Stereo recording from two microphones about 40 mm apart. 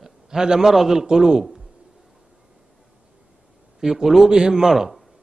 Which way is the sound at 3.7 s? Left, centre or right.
Centre.